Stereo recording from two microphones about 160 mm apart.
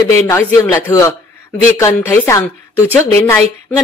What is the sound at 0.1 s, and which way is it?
Speech, 15° left (ahead or behind).